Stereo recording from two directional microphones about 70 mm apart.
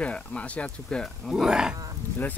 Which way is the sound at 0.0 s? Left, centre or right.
Centre.